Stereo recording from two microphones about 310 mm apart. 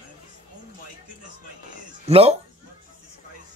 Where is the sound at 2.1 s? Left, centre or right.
Centre.